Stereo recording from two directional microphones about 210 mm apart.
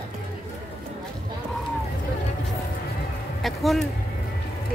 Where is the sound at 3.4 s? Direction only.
Centre (ahead or behind).